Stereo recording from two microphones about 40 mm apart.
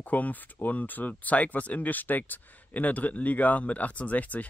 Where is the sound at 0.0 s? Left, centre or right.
Left.